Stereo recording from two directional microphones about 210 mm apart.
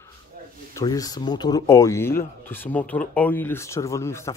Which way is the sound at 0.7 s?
15° left (ahead or behind).